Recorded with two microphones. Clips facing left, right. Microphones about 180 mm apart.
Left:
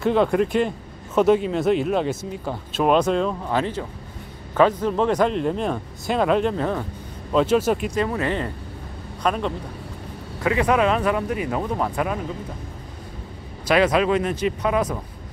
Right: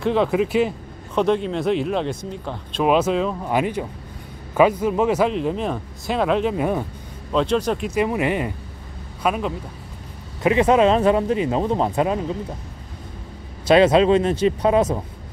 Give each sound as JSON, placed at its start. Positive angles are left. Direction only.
{"t": 0.0, "sound": "speech", "side_deg": 0}
{"t": 3.4, "sound": "speech", "side_deg": -15}
{"t": 6.5, "sound": "speech", "side_deg": -10}
{"t": 7.3, "sound": "speech", "side_deg": 5}
{"t": 7.9, "sound": "speech", "side_deg": -15}
{"t": 10.4, "sound": "speech", "side_deg": -20}
{"t": 13.7, "sound": "speech", "side_deg": -25}